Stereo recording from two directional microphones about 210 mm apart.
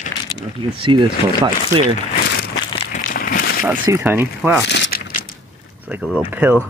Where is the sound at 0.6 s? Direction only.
25° right (ahead or behind).